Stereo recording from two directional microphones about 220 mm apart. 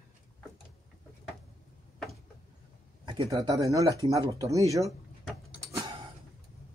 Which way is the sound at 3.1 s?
20° right (ahead or behind).